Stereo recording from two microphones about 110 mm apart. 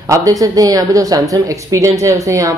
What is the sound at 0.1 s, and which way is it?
A woman's voice, 30° right (ahead or behind).